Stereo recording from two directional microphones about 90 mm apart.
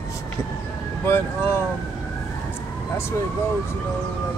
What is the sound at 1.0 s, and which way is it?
Speech, 25° left (ahead or behind).